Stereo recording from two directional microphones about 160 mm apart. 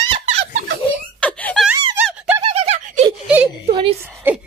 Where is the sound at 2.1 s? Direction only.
5° right (ahead or behind).